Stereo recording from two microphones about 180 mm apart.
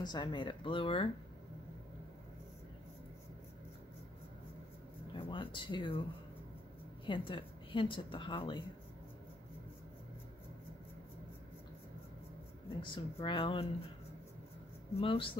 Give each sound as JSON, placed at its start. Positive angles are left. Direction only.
{"t": 0.0, "sound": "a woman's voice", "side_deg": 25}
{"t": 5.1, "sound": "a woman's voice", "side_deg": 25}
{"t": 7.1, "sound": "a woman's voice", "side_deg": 30}
{"t": 12.8, "sound": "a woman's voice", "side_deg": 25}
{"t": 15.0, "sound": "speech", "side_deg": 30}